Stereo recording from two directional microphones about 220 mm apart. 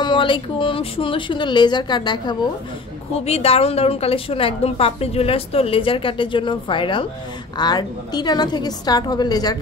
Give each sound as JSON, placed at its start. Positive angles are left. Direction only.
{"t": 0.0, "sound": "a woman's voice", "side_deg": 20}